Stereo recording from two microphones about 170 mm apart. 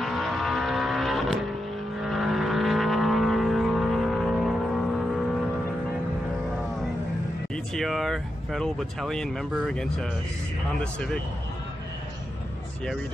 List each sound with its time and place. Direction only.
0.0 s vehicle: centre (ahead or behind)
7.5 s speech: centre (ahead or behind)